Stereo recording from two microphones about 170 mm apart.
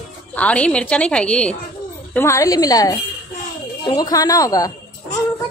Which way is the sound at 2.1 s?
20° left (ahead or behind).